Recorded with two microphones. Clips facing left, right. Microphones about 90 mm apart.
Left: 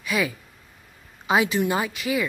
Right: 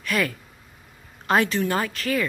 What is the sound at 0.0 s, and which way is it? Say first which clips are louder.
A woman's voice: even; 5° left (ahead or behind).